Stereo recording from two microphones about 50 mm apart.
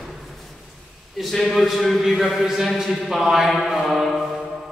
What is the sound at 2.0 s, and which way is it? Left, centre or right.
Speech, centre.